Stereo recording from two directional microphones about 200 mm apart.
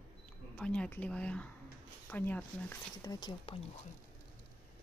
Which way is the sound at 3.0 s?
20° left (ahead or behind).